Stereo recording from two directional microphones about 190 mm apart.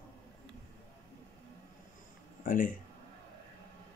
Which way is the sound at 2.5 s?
45° left (ahead or behind).